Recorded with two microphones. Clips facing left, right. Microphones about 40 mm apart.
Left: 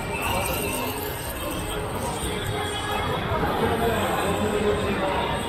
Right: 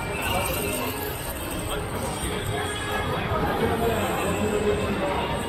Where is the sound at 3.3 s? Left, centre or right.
Centre.